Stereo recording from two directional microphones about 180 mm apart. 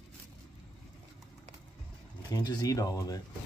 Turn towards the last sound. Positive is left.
turn(degrees=20)  # may be behind; listen again after turning